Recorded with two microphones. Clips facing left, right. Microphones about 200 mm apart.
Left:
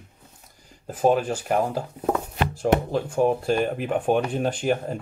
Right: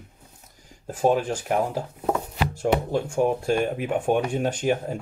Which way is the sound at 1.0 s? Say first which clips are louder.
Left 1 dB; 10° left (ahead or behind).